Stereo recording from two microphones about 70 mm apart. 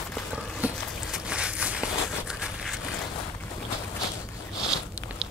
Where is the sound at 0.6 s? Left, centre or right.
Right.